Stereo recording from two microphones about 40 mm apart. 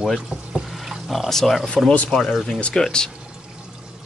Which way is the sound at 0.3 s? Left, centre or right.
Right.